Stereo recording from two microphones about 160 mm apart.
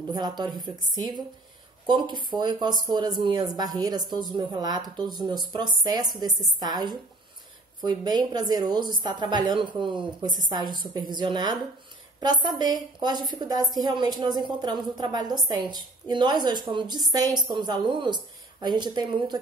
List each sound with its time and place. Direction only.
0.4 s a woman's voice: 25° right (ahead or behind)